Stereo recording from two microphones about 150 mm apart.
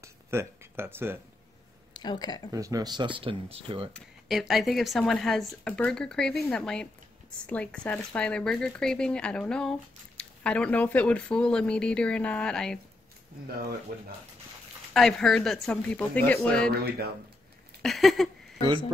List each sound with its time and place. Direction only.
0.0 s speech: 15° right (ahead or behind)
2.0 s speech: 30° left (ahead or behind)
2.5 s speech: 25° right (ahead or behind)
3.9 s speech: centre (ahead or behind)
15.0 s speech: 5° left (ahead or behind)
17.8 s speech: centre (ahead or behind)